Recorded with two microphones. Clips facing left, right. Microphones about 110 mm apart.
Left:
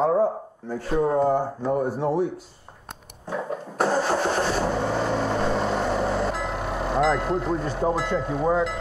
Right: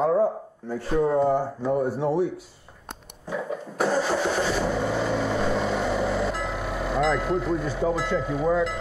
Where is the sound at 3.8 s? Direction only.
Centre (ahead or behind).